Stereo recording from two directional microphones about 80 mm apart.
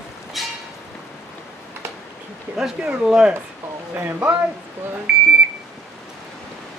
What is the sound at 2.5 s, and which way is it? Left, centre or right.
Speech, centre.